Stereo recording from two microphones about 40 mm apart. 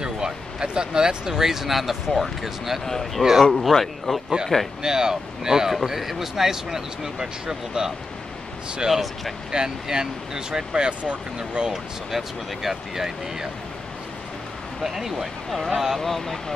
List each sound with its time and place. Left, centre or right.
0.0 s speech: centre
2.8 s speech: centre
3.2 s speech: centre
3.5 s speech: centre
4.8 s speech: centre
5.7 s speech: centre
8.8 s speech: centre
9.5 s speech: centre
11.3 s speech: centre
12.1 s speech: centre
14.8 s speech: centre
16.0 s speech: centre